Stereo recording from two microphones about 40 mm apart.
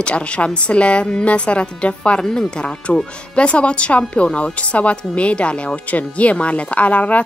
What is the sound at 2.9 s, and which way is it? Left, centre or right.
A woman's voice, left.